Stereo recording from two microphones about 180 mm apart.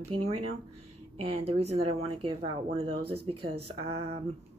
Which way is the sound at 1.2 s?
35° right (ahead or behind).